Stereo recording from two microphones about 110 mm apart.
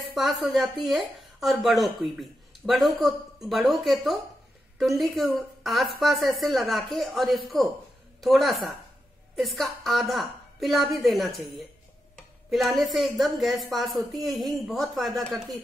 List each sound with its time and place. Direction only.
0.0 s speech: centre (ahead or behind)